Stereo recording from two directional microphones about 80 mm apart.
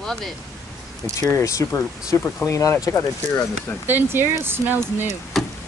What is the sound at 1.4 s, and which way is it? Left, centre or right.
Speech, left.